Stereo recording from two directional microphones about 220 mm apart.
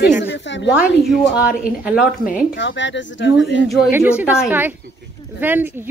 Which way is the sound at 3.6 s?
Centre (ahead or behind).